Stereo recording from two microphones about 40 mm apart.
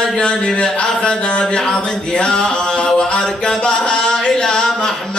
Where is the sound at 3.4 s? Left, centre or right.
Left.